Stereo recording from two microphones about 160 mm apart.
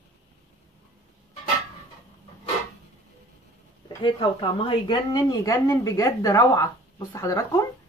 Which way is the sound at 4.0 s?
30° left (ahead or behind).